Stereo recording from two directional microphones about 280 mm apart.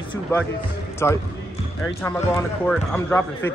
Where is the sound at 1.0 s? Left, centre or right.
Centre.